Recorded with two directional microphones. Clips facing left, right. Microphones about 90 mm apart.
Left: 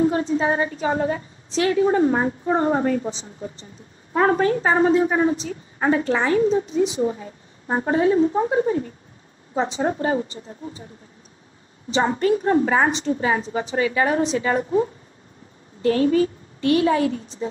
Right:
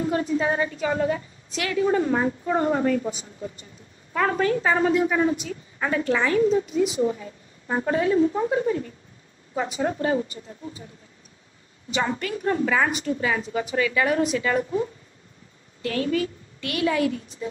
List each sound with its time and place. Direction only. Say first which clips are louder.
0.0 s a woman's voice: left 4 dB; 30° left (ahead or behind)
11.9 s a woman's voice: left 7 dB; 30° left (ahead or behind)